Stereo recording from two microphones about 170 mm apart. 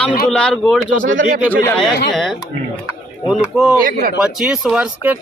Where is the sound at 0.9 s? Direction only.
50° right (ahead or behind).